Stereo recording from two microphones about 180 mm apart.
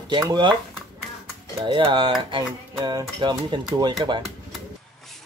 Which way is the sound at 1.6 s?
25° right (ahead or behind).